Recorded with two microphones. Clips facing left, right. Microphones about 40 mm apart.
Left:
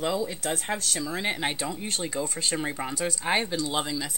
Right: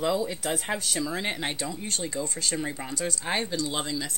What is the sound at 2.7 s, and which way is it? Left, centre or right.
Speech, centre.